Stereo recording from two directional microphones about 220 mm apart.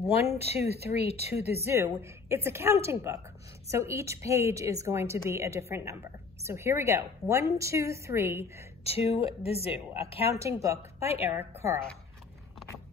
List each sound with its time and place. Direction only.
0.8 s a woman's voice: 30° left (ahead or behind)
1.5 s a woman's voice: 10° right (ahead or behind)
8.8 s a woman's voice: 25° left (ahead or behind)
10.4 s a woman's voice: 15° right (ahead or behind)